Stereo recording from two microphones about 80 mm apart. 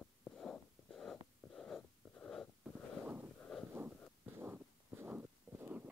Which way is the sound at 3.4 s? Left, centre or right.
Centre.